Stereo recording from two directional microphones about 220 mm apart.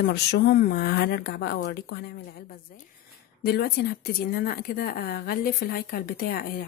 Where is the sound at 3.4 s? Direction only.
45° left (ahead or behind).